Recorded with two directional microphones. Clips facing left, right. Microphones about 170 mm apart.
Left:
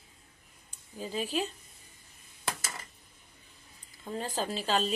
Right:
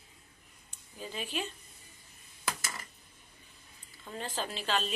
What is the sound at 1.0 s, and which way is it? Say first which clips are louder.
Speech: left 5 dB; 35° left (ahead or behind).